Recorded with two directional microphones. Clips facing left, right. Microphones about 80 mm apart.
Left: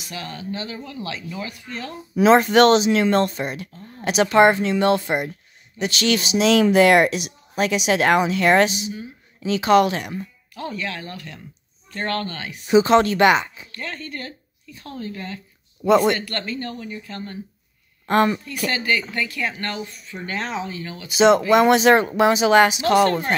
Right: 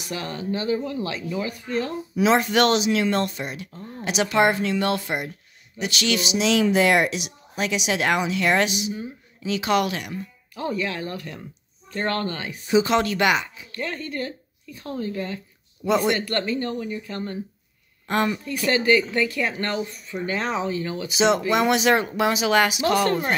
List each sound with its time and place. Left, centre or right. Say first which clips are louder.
0.1 s speech: right 3 dB; right
2.1 s speech: left 5 dB; left
10.5 s speech: right 3 dB; right
12.6 s speech: left 5 dB; left
13.7 s speech: right 3 dB; right
15.9 s speech: left 5 dB; left
16.2 s speech: right 4 dB; right
18.0 s speech: left 5 dB; left
18.7 s speech: right 5 dB; right
21.1 s speech: left 6 dB; left